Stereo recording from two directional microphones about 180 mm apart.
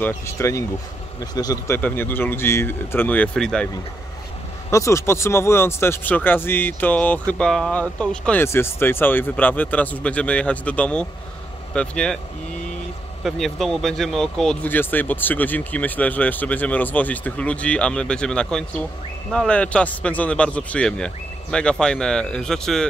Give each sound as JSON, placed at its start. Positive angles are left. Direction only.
{"t": 0.0, "sound": "speech", "side_deg": 15}
{"t": 1.8, "sound": "speech", "side_deg": 10}
{"t": 4.6, "sound": "a man's voice", "side_deg": 15}
{"t": 13.2, "sound": "a man's voice", "side_deg": 0}